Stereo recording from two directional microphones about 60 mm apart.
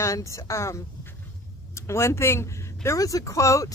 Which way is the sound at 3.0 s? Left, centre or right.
Left.